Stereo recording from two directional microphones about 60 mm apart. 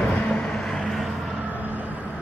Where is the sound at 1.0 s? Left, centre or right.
Centre.